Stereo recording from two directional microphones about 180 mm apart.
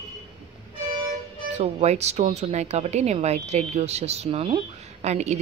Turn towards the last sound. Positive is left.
turn(degrees=-35)  # may be behind; listen again after turning